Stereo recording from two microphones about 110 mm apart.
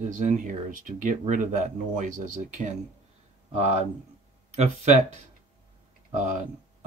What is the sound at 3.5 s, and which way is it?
Speech, 85° right.